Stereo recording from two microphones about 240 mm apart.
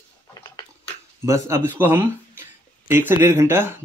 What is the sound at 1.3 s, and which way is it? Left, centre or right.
Speech, centre.